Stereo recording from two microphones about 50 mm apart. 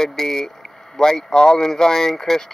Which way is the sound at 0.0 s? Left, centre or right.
Centre.